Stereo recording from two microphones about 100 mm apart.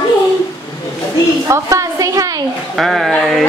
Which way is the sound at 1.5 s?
35° right (ahead or behind).